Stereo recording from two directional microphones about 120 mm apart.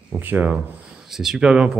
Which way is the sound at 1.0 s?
5° right (ahead or behind).